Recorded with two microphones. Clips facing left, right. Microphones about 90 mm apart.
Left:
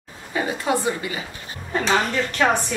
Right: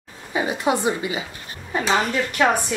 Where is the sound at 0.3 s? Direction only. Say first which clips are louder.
Right 1 dB; 20° right (ahead or behind).